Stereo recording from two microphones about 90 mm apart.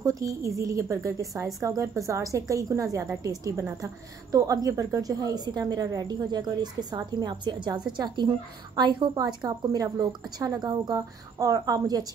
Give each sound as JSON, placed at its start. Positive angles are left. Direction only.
{"t": 0.0, "sound": "a woman's voice", "side_deg": -40}
{"t": 11.0, "sound": "a woman's voice", "side_deg": -40}